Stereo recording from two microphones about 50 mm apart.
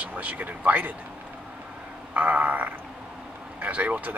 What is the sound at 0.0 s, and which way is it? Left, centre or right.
Speech, right.